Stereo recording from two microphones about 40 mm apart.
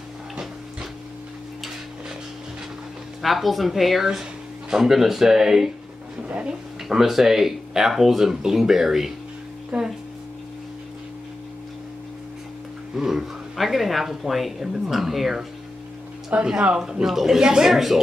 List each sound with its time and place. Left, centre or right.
3.2 s speech: centre
4.2 s speech: centre
6.2 s a sound: right
6.9 s speech: centre
9.7 s speech: right
12.9 s speech: centre
16.3 s speech: right
16.7 s speech: centre